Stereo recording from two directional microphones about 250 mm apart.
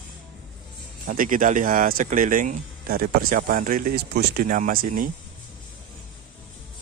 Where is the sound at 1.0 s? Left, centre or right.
Right.